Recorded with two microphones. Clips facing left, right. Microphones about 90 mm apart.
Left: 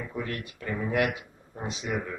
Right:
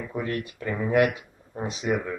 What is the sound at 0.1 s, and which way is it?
Speech, 25° right (ahead or behind).